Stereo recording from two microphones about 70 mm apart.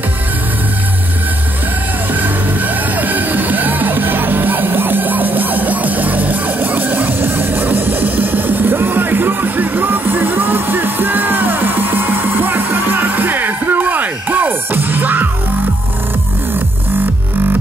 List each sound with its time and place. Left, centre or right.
2.1 s music: right